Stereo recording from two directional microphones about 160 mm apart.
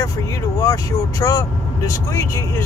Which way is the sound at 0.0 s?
20° left (ahead or behind).